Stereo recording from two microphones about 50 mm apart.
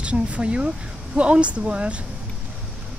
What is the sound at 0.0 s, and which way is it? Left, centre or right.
Speech, right.